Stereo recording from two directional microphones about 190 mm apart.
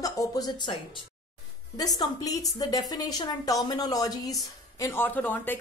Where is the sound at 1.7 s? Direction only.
20° left (ahead or behind).